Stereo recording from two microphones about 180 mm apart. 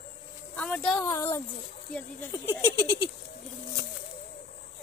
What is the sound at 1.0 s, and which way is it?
Speech, 15° left (ahead or behind).